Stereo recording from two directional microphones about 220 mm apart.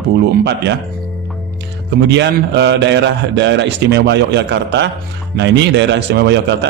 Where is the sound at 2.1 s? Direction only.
50° right (ahead or behind).